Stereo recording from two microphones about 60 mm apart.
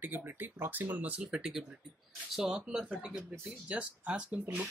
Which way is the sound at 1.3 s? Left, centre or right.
Centre.